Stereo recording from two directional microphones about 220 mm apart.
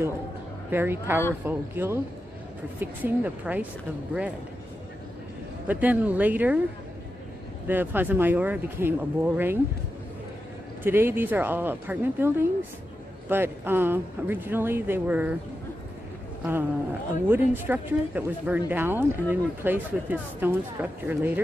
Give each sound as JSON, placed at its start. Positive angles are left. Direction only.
{"t": 0.7, "sound": "speech", "side_deg": -10}
{"t": 5.7, "sound": "speech", "side_deg": -5}
{"t": 7.6, "sound": "speech", "side_deg": -10}
{"t": 10.8, "sound": "speech", "side_deg": -10}
{"t": 17.3, "sound": "speech", "side_deg": -10}